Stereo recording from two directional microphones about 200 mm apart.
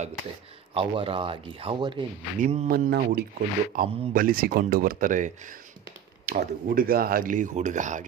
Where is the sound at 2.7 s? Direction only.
50° right (ahead or behind).